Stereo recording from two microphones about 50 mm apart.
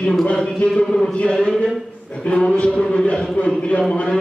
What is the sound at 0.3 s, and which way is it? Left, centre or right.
Chant, centre.